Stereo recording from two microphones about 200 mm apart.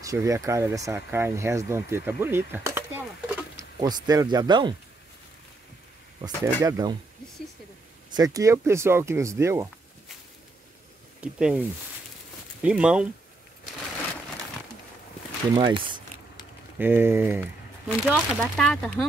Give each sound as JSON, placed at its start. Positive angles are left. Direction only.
{"t": 0.0, "sound": "speech", "side_deg": -15}
{"t": 6.2, "sound": "speech", "side_deg": -20}
{"t": 8.1, "sound": "speech", "side_deg": -20}
{"t": 11.1, "sound": "speech", "side_deg": -5}
{"t": 12.6, "sound": "speech", "side_deg": -5}
{"t": 15.5, "sound": "speech", "side_deg": -25}
{"t": 16.7, "sound": "speech", "side_deg": -10}